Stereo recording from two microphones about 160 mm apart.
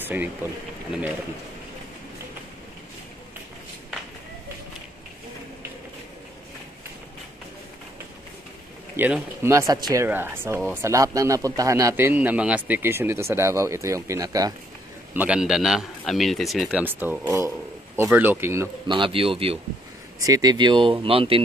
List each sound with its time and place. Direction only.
0.0 s speech: 10° right (ahead or behind)
8.9 s a man's voice: 10° right (ahead or behind)
10.0 s a man's voice: 15° right (ahead or behind)
15.1 s a man's voice: 5° right (ahead or behind)
18.9 s speech: 30° right (ahead or behind)
20.2 s speech: 20° right (ahead or behind)